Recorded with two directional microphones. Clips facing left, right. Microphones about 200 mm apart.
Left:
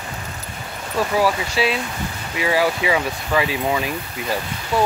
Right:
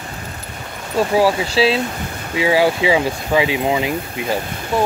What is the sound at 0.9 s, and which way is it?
Speech, 25° right (ahead or behind).